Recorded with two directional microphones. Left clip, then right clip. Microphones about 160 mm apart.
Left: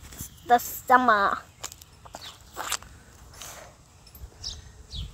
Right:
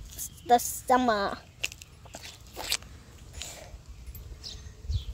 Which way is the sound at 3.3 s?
15° right (ahead or behind).